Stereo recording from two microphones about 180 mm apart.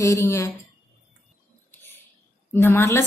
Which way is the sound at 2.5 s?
15° left (ahead or behind).